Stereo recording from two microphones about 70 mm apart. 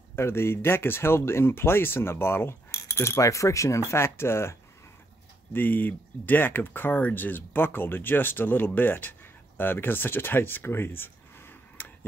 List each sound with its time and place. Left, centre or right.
0.1 s speech: left
2.7 s speech: left
5.5 s speech: left